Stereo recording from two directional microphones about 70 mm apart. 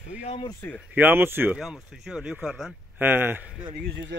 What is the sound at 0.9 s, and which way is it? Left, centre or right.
Speech, right.